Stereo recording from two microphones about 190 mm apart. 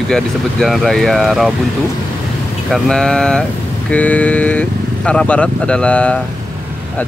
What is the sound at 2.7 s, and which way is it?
Speech, centre (ahead or behind).